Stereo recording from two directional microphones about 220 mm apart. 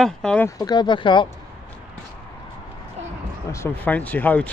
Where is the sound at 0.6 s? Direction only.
20° left (ahead or behind).